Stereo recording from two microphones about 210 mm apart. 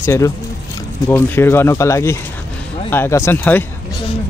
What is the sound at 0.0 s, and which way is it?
Speech, 10° left (ahead or behind).